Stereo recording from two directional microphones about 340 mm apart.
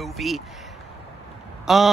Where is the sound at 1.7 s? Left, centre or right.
Centre.